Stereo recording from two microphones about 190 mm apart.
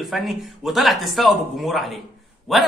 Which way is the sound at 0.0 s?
Centre (ahead or behind).